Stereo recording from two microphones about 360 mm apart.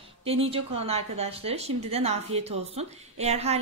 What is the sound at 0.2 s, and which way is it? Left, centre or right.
Speech, centre.